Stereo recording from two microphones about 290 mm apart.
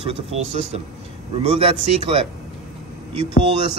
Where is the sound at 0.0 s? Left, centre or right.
Centre.